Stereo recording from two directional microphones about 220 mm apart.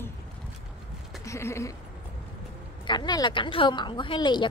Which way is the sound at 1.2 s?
15° left (ahead or behind).